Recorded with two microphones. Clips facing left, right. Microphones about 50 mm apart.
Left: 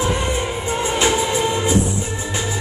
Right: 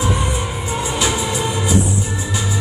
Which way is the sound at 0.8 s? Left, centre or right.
Left.